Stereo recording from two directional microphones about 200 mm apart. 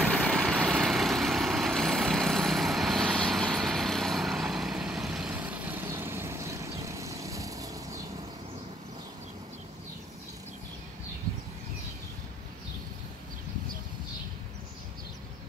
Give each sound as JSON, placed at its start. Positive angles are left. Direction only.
{"t": 0.0, "sound": "vehicle", "side_deg": 5}